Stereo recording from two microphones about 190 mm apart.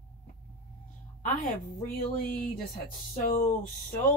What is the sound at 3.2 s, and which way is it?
Speech, 40° left (ahead or behind).